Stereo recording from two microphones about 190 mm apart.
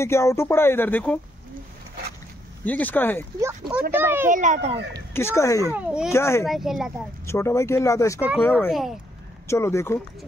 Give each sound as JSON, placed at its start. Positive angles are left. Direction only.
{"t": 0.0, "sound": "speech", "side_deg": 15}
{"t": 2.6, "sound": "speech", "side_deg": 10}
{"t": 3.3, "sound": "speech", "side_deg": -15}
{"t": 4.3, "sound": "a child's voice", "side_deg": -40}
{"t": 5.1, "sound": "speech", "side_deg": 15}
{"t": 5.7, "sound": "speech", "side_deg": -5}
{"t": 6.1, "sound": "speech", "side_deg": 15}
{"t": 6.4, "sound": "speech", "side_deg": 0}
{"t": 7.2, "sound": "speech", "side_deg": 15}
{"t": 8.6, "sound": "speech", "side_deg": 0}
{"t": 9.5, "sound": "speech", "side_deg": 15}